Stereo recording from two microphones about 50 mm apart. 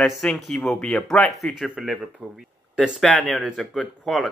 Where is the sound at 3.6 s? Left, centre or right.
Centre.